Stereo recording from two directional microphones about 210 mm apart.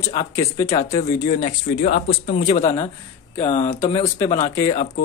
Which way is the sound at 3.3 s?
30° left (ahead or behind).